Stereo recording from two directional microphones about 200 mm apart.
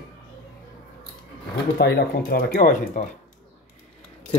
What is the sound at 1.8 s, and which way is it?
Speech, 55° left (ahead or behind).